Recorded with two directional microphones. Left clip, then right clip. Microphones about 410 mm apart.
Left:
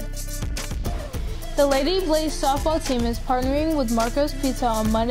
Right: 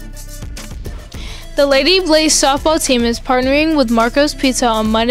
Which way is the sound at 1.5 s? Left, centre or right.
Right.